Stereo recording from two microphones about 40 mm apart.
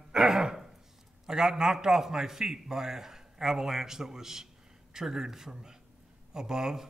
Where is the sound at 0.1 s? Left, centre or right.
Centre.